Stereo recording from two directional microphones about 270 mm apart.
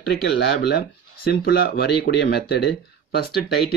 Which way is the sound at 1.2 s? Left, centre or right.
Left.